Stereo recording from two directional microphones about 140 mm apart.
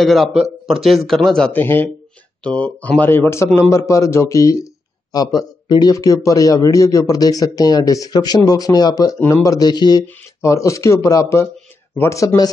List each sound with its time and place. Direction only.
0.0 s speech: centre (ahead or behind); by 12.4 s 20° left (ahead or behind)